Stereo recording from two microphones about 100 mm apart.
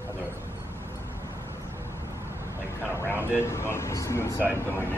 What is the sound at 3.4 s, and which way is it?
Speech, 25° left (ahead or behind).